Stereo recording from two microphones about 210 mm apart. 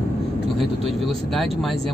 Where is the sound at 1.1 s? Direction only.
Centre (ahead or behind).